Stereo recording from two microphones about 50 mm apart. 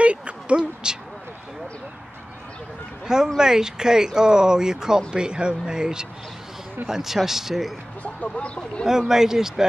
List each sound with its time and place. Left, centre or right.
0.0 s a sound: right
3.3 s speech: centre
8.0 s speech: left
8.8 s speech: centre